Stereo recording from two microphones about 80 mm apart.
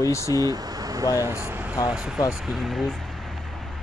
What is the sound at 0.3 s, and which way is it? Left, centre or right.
Speech, right.